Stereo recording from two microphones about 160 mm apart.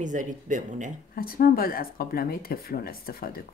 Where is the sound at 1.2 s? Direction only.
65° left (ahead or behind).